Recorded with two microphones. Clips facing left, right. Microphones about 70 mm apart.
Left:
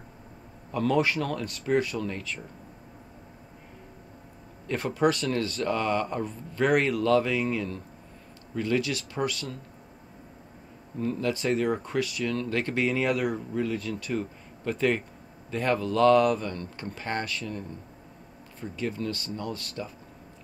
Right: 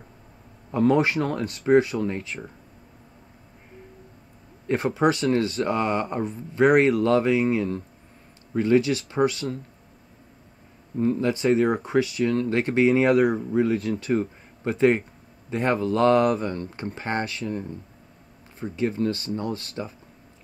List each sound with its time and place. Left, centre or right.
0.7 s speech: right
1.8 s speech: right
4.6 s speech: right
11.0 s speech: right
13.0 s speech: right